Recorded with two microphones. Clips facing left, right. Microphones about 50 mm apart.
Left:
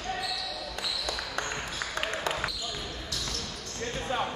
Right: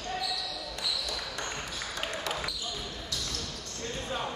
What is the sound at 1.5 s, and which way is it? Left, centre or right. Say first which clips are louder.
Ping: left 3 dB; left.